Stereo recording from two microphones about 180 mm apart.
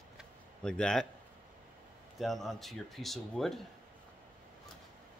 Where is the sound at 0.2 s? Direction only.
5° left (ahead or behind).